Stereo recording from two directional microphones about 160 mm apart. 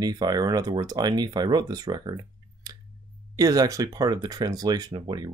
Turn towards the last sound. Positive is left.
turn(degrees=-25)  # may be behind; listen again after turning